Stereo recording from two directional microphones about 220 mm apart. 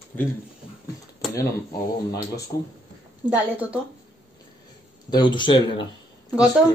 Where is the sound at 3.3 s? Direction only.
5° right (ahead or behind).